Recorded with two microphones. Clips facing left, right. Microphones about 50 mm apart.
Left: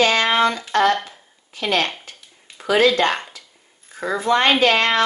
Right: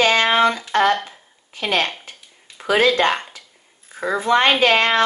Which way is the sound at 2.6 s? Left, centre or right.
Right.